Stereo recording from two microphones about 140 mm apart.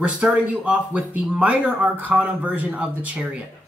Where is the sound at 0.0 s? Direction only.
10° right (ahead or behind).